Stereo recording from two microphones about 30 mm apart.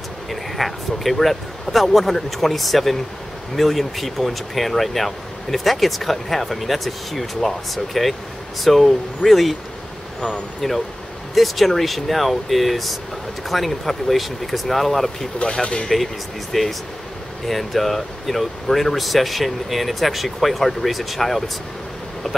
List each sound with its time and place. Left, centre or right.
0.3 s speech: centre
10.6 s speech: centre
15.6 s speech: left
16.5 s speech: centre